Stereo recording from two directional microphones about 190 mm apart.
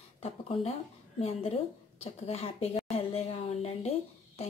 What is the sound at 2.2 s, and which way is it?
A woman's voice, 30° left (ahead or behind).